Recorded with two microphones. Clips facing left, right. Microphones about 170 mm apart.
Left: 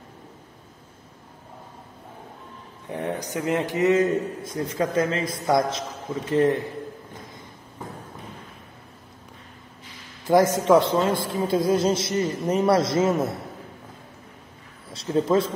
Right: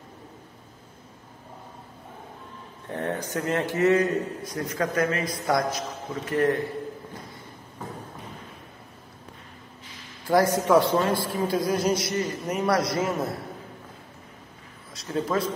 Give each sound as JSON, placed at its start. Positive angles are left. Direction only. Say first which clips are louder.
{"t": 2.9, "sound": "a man's voice", "louder": "left 1 dB", "side_deg": 15}
{"t": 10.2, "sound": "a man's voice", "louder": "left 3 dB", "side_deg": 20}
{"t": 14.9, "sound": "speech", "louder": "left 6 dB", "side_deg": 30}